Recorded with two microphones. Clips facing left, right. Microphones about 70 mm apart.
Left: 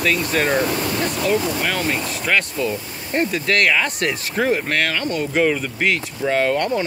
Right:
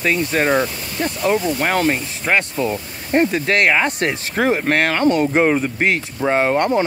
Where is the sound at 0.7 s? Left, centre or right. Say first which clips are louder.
Left 9 dB; left.